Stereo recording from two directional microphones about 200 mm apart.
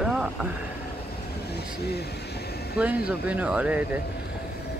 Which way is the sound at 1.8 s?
55° left (ahead or behind).